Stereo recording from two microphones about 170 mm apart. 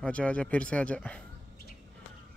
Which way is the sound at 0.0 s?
5° left (ahead or behind).